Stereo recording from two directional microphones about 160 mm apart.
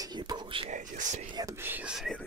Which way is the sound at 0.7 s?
50° right (ahead or behind).